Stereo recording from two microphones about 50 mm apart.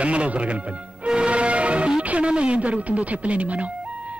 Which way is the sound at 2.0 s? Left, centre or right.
Right.